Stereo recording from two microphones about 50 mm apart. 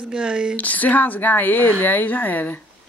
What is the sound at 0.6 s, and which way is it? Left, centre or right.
Speech, left.